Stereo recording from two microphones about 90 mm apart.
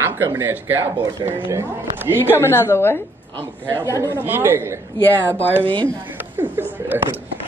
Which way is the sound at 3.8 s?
35° right (ahead or behind).